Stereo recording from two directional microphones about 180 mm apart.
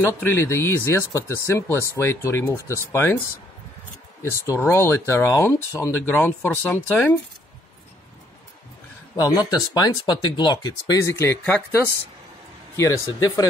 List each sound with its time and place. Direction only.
0.2 s speech: 15° left (ahead or behind)
4.2 s speech: 15° left (ahead or behind)
9.1 s speech: 20° left (ahead or behind)